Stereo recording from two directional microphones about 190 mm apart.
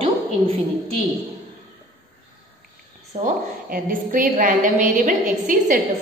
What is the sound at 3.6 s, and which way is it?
A woman's voice, 45° right (ahead or behind).